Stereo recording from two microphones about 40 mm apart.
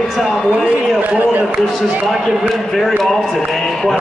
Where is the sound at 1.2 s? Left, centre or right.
Right.